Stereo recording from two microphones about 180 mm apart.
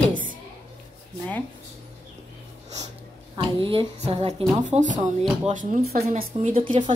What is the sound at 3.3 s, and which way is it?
A woman's voice, 30° right (ahead or behind).